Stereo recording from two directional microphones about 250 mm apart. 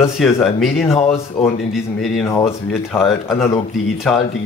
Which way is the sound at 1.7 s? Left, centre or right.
Centre.